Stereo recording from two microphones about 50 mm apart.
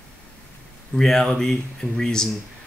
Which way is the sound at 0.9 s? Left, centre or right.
Centre.